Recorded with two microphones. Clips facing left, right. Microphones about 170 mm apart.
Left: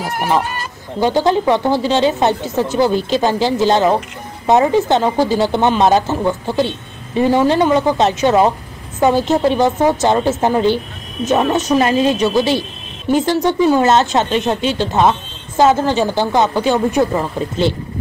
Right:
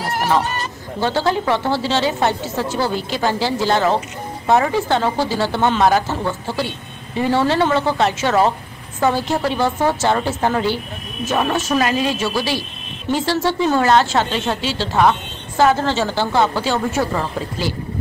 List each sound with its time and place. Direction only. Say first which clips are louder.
0.3 s a woman's voice: left 2 dB; 5° left (ahead or behind); by 17.7 s 25° left (ahead or behind)